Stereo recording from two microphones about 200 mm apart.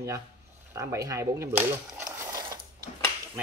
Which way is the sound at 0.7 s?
15° right (ahead or behind).